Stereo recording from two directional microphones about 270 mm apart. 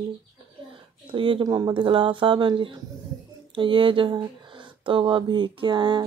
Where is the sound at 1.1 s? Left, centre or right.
Centre.